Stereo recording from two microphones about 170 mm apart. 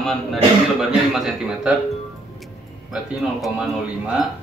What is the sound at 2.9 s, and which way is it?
Speech, centre (ahead or behind).